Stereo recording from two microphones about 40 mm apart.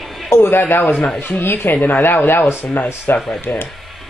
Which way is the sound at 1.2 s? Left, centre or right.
Left.